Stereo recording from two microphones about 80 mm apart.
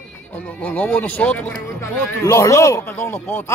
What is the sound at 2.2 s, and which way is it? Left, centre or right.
Speech, left.